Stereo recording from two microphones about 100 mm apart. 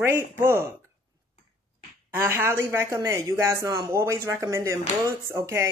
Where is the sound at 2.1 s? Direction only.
25° right (ahead or behind).